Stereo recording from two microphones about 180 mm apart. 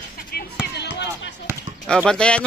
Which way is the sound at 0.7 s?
75° left (ahead or behind).